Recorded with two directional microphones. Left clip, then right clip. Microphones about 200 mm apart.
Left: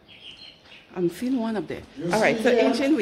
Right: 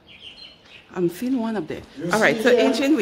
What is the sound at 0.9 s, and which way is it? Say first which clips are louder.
Speech: right 2 dB; 15° right (ahead or behind).